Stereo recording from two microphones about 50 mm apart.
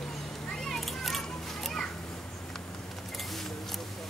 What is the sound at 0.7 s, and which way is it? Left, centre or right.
Children playing, centre.